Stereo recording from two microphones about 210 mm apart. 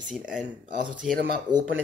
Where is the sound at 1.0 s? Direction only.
Centre (ahead or behind).